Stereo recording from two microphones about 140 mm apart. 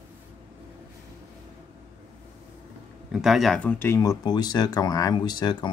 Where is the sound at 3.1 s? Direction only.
5° right (ahead or behind).